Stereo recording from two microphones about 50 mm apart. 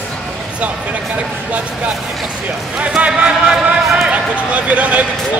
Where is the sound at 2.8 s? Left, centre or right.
Right.